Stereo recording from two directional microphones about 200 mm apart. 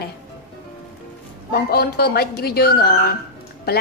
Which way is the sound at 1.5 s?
50° left (ahead or behind).